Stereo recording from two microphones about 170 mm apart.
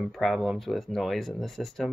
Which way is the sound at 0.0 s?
Centre (ahead or behind).